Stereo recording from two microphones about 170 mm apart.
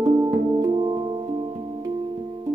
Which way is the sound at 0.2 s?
25° right (ahead or behind).